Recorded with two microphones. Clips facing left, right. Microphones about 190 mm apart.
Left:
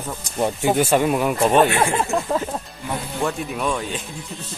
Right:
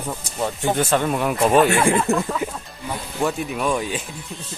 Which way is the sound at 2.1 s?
35° right (ahead or behind).